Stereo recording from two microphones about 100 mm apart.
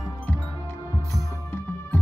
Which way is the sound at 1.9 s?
30° left (ahead or behind).